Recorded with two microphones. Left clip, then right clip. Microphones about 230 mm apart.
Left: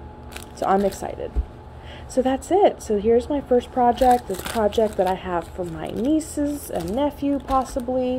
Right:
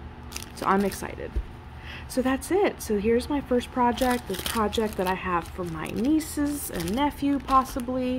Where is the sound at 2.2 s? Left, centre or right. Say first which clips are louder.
Left 6 dB; centre.